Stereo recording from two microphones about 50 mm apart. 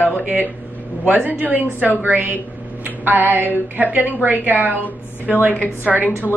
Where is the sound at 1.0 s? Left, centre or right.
Right.